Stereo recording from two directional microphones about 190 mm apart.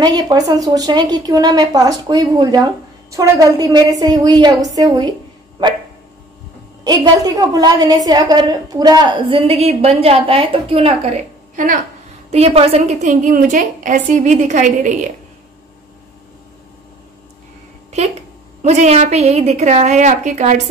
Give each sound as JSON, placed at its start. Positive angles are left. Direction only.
{"t": 0.0, "sound": "a woman's voice", "side_deg": -20}
{"t": 6.8, "sound": "a woman's voice", "side_deg": -20}
{"t": 12.3, "sound": "a woman's voice", "side_deg": -35}
{"t": 18.6, "sound": "a woman's voice", "side_deg": -35}